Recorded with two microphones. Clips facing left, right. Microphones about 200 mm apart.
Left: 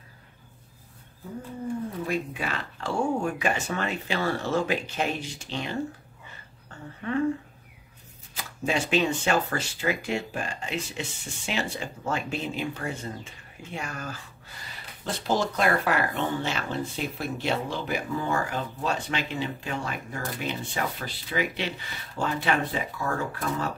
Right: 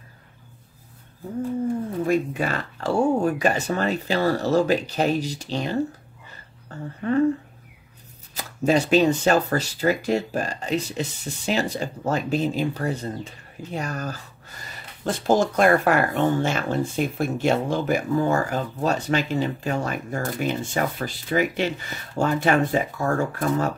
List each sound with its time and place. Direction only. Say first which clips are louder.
2.0 s speech: right 10 dB; 45° right (ahead or behind)
7.0 s speech: right 6 dB; 40° right (ahead or behind)
8.4 s speech: right 8 dB; 40° right (ahead or behind)